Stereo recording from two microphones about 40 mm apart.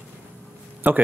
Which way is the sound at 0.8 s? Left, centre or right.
Right.